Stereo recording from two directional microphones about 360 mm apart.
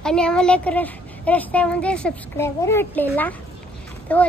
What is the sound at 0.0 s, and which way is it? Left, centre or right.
A woman's voice, centre.